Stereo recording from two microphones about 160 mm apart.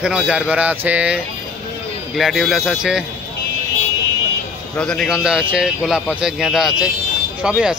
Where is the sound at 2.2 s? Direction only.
Centre (ahead or behind).